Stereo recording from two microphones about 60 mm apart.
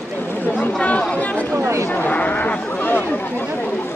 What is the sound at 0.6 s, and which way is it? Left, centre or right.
Chatter, left.